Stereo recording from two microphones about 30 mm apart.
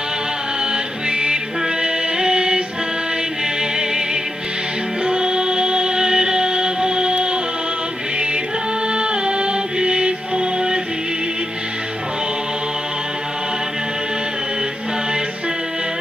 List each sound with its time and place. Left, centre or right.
1.1 s music: right
5.0 s music: right
8.9 s music: right